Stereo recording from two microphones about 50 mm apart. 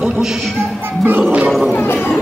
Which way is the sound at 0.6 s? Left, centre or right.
Right.